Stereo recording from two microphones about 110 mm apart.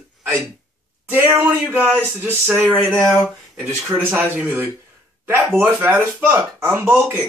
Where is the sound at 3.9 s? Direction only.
20° right (ahead or behind).